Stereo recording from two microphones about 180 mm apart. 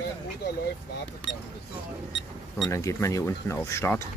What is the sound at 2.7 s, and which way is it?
Speech, 15° left (ahead or behind).